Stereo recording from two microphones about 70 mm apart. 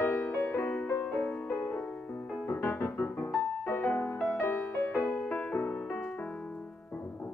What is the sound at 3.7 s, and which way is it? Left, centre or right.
Music, left.